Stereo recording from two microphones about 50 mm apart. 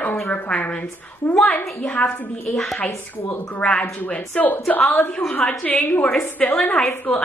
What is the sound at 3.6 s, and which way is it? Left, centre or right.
Speech, left.